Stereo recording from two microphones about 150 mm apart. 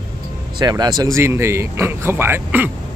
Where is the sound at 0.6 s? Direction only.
25° right (ahead or behind).